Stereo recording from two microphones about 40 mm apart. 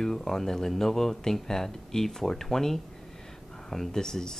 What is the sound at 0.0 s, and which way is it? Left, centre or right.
Speech, centre.